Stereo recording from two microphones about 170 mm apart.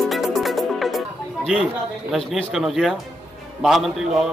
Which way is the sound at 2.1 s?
Centre (ahead or behind).